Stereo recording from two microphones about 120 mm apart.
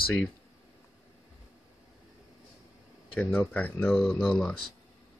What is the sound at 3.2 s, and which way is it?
Speech, 15° left (ahead or behind).